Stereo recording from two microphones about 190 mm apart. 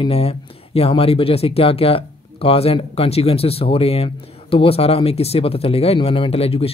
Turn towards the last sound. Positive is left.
turn(degrees=30)  # may be behind; listen again after turning